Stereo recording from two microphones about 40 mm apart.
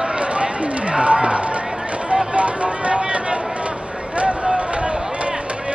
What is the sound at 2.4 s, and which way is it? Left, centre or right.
Music, right.